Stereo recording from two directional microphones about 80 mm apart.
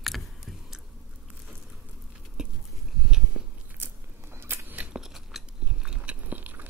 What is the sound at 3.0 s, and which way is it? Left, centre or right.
Biting, centre.